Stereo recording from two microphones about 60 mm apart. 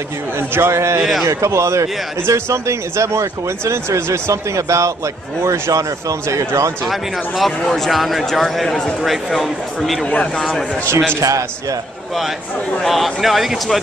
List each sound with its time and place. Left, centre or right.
0.6 s a man's voice: right
6.9 s speech: centre
10.0 s a man's voice: left
11.1 s speech: right
12.8 s speech: centre